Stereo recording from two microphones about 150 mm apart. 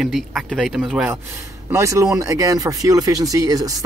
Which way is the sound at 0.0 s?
Centre (ahead or behind).